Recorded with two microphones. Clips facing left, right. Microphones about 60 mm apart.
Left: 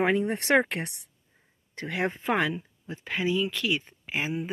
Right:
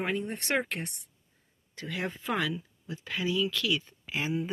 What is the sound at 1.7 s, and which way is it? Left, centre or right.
Speech, left.